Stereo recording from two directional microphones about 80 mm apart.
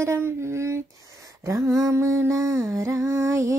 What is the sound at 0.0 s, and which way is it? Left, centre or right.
Female singing, right.